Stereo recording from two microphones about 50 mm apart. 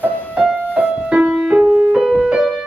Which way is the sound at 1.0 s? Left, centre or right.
Right.